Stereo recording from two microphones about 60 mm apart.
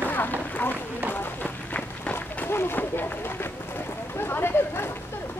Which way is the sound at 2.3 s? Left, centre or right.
Left.